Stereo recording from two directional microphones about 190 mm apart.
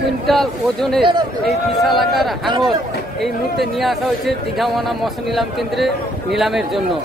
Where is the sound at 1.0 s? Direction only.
25° right (ahead or behind).